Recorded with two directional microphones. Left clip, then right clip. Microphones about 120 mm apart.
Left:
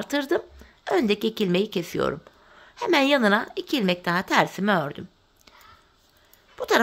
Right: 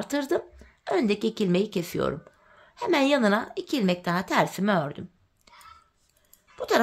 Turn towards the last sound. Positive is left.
turn(degrees=25)  # may be behind; listen again after turning